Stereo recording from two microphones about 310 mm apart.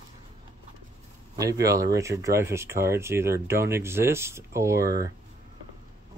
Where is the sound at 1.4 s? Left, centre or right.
Centre.